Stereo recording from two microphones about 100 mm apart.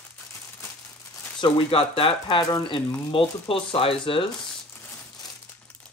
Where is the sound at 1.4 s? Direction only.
60° left (ahead or behind).